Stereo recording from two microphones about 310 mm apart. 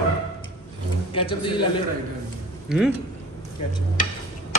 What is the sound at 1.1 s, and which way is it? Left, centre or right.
Speech, centre.